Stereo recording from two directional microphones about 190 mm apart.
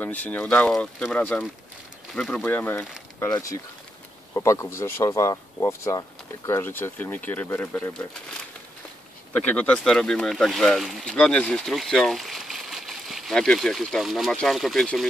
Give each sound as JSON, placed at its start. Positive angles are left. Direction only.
{"t": 0.0, "sound": "speech", "side_deg": 10}